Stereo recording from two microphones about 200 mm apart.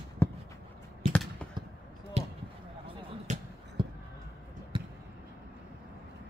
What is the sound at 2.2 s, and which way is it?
Basketball bounce, 35° right (ahead or behind).